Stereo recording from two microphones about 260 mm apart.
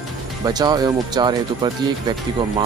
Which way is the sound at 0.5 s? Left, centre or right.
Centre.